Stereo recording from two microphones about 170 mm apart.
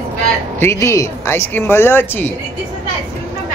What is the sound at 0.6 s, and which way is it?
Speech, 15° left (ahead or behind).